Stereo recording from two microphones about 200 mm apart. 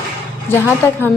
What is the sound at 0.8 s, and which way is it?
Speech, 10° left (ahead or behind).